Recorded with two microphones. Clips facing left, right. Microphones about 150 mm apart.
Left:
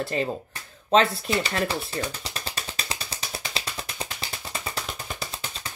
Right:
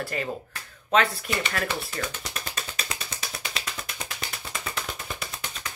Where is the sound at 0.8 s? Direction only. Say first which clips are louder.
Left 3 dB; 30° left (ahead or behind).